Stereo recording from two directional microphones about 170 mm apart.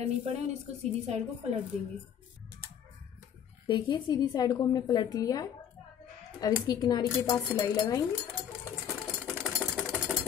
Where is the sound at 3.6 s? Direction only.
25° left (ahead or behind).